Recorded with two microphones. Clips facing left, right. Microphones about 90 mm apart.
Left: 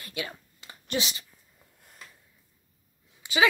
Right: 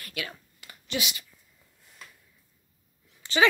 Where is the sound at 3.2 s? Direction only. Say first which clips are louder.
Right 1 dB; 10° left (ahead or behind).